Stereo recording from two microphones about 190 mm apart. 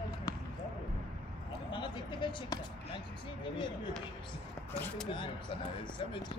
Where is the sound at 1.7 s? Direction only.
25° left (ahead or behind).